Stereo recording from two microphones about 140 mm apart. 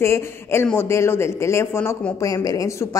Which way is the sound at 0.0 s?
20° left (ahead or behind).